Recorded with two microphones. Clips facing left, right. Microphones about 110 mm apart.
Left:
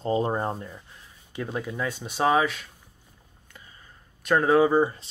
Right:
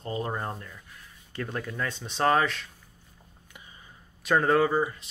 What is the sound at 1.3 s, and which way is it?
Speech, 15° left (ahead or behind).